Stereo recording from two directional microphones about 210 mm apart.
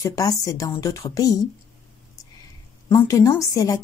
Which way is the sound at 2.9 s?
15° left (ahead or behind).